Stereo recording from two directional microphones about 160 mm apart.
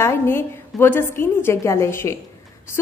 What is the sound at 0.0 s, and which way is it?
A woman's voice, 15° left (ahead or behind).